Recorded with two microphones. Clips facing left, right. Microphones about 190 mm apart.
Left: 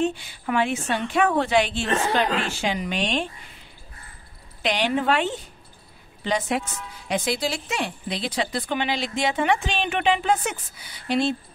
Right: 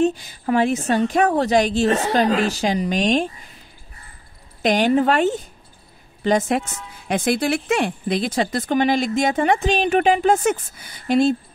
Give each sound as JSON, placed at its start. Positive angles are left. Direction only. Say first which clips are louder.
{"t": 0.0, "sound": "a woman's voice", "louder": "right 5 dB", "side_deg": -40}
{"t": 4.6, "sound": "speech", "louder": "right 7 dB", "side_deg": -45}